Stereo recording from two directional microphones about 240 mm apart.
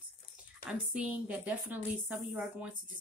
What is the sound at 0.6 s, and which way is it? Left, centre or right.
Speech, centre.